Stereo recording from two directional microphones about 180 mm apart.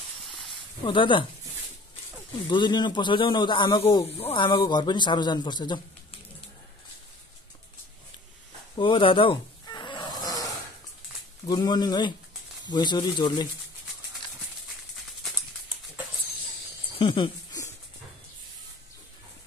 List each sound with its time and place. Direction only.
0.8 s speech: 30° left (ahead or behind)
2.5 s speech: 25° left (ahead or behind)
8.7 s a sound: 30° left (ahead or behind)
11.4 s speech: 20° left (ahead or behind)
17.0 s speech: 25° left (ahead or behind)